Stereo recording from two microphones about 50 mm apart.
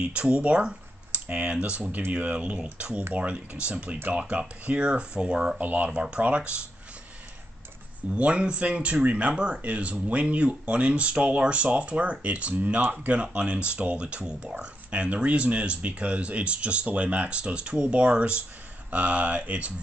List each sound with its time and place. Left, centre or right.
0.0 s speech: right
1.8 s speech: right; by 5.6 s centre
5.6 s speech: right
5.9 s speech: right
8.1 s speech: right